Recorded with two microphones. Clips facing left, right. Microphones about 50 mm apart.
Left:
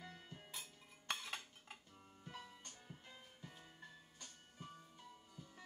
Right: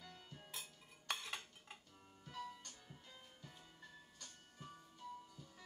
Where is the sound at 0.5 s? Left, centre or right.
Centre.